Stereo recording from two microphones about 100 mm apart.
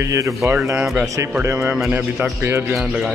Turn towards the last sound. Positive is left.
turn(degrees=-5)  # may be behind; listen again after turning